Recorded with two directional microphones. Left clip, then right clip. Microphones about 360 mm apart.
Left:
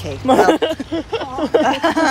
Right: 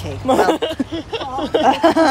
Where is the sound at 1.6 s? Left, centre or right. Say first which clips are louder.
Right 7 dB; centre.